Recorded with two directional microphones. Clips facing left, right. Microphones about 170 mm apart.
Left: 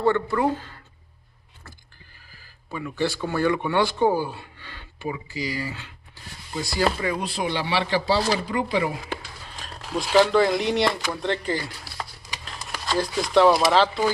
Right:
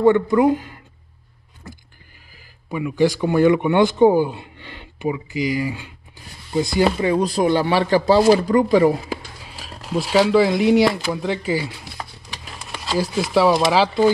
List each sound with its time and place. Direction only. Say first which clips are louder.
0.0 s speech: right 7 dB; 15° right (ahead or behind)
2.3 s speech: right 7 dB; 15° right (ahead or behind)
7.2 s speech: right 9 dB; 40° right (ahead or behind)
9.1 s speech: right 4 dB; 5° right (ahead or behind)
12.0 s a sound: left 1 dB; 5° right (ahead or behind)
12.8 s speech: right 3 dB; 5° right (ahead or behind)